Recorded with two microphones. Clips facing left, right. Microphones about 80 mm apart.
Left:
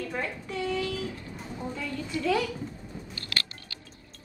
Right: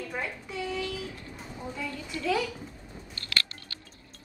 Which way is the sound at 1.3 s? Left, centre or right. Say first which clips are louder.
Left 3 dB; centre.